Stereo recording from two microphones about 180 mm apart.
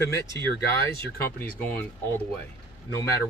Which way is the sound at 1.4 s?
10° left (ahead or behind).